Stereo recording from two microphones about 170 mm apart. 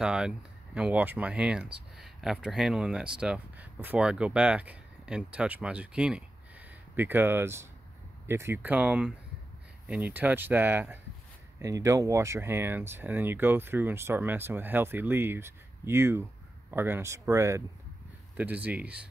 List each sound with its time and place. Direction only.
0.0 s speech: 5° right (ahead or behind)